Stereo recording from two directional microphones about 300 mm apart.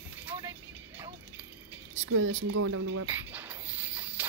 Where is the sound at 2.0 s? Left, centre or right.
Right.